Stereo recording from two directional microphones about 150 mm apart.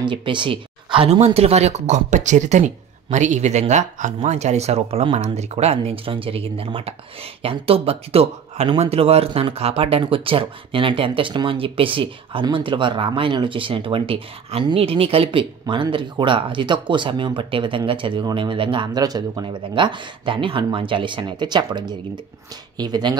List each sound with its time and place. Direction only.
0.0 s speech: 35° right (ahead or behind)